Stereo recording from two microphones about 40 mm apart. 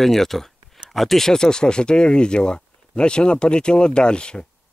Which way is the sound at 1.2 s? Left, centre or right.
Centre.